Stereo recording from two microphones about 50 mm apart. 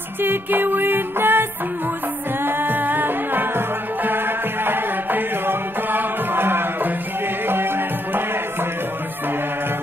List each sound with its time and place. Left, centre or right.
0.2 s music: right